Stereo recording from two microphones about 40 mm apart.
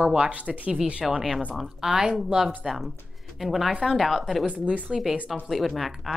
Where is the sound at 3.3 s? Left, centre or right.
Centre.